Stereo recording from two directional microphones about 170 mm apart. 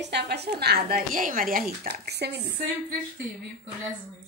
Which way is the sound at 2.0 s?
75° right (ahead or behind).